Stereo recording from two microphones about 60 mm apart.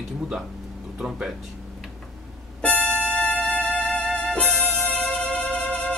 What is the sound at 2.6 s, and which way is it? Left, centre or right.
Music, left.